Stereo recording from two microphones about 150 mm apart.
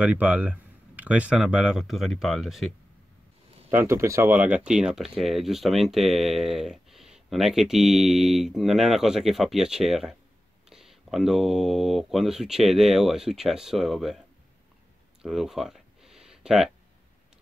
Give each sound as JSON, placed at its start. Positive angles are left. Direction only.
{"t": 0.0, "sound": "speech", "side_deg": -10}
{"t": 3.7, "sound": "speech", "side_deg": -15}
{"t": 15.2, "sound": "a sound", "side_deg": 0}